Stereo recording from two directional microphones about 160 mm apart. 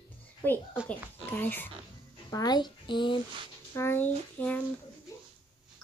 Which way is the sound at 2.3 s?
25° left (ahead or behind).